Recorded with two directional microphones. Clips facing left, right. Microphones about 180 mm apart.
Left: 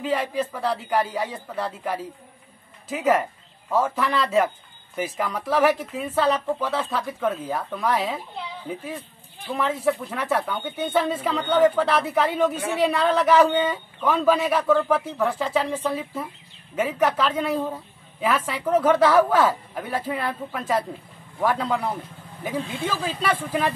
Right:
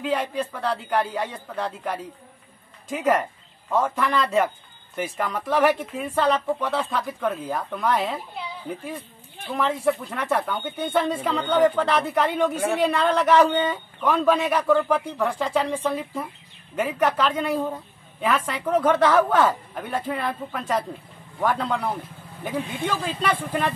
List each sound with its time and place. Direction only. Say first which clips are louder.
0.0 s speech: left 1 dB; 5° left (ahead or behind)
9.5 s speech: even; centre (ahead or behind)
22.6 s speech: right 1 dB; 15° right (ahead or behind)
22.8 s speech: even; 5° left (ahead or behind)